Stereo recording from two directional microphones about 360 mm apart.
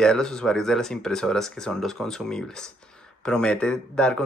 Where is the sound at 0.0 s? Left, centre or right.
Centre.